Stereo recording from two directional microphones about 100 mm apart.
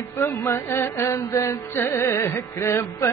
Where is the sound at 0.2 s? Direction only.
30° left (ahead or behind).